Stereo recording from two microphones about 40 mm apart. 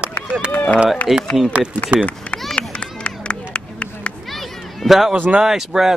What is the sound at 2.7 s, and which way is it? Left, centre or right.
Run, left.